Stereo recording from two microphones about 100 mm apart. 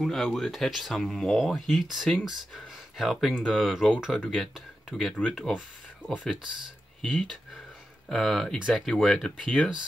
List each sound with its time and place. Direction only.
0.0 s speech: centre (ahead or behind)